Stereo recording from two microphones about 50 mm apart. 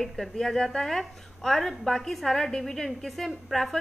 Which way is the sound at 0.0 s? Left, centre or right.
Centre.